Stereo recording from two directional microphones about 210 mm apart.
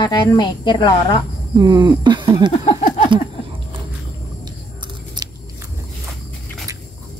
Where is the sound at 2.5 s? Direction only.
30° left (ahead or behind).